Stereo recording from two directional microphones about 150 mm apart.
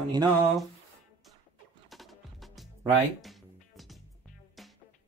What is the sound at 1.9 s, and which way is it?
Music, centre (ahead or behind).